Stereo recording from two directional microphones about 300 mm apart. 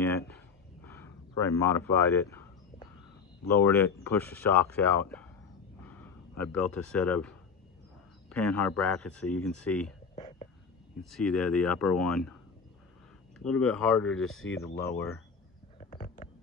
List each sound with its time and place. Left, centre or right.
0.8 s speech: centre
3.4 s speech: centre
5.8 s a sound: centre
8.3 s speech: centre
10.1 s whispering: centre
11.0 s speech: centre
13.4 s speech: centre
14.2 s speech: left
15.9 s a sound: left